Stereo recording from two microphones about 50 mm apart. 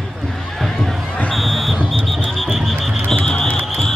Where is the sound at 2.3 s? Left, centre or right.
Centre.